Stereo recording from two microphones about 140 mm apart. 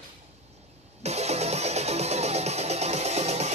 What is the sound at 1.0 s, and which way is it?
Music, 50° right (ahead or behind).